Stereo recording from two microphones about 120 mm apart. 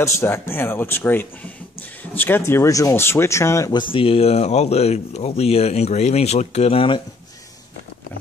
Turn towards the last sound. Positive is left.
turn(degrees=50)  # may be behind; listen again after turning